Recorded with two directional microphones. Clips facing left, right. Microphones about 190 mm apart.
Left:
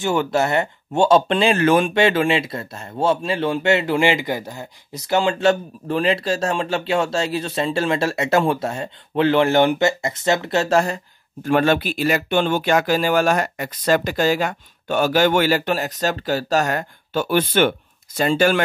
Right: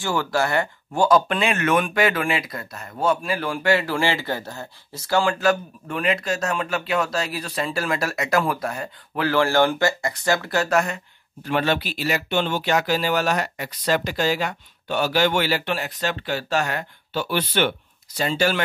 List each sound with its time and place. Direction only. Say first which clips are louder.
0.0 s speech: left 4 dB; 20° left (ahead or behind)
11.4 s speech: left 5 dB; 50° left (ahead or behind)